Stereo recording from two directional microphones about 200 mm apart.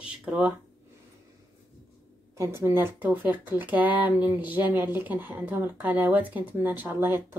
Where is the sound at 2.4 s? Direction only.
15° right (ahead or behind).